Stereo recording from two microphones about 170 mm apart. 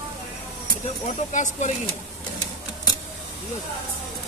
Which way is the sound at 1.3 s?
45° left (ahead or behind).